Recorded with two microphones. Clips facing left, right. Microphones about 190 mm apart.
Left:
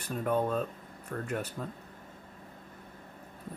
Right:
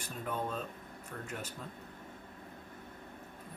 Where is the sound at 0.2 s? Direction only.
55° left (ahead or behind).